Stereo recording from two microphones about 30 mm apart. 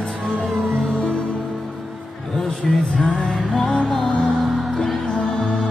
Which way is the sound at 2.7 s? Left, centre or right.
Centre.